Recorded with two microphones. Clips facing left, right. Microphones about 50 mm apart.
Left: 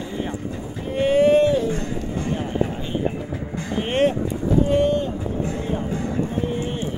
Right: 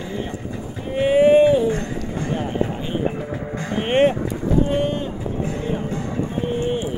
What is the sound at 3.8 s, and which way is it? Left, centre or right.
Cattle, right.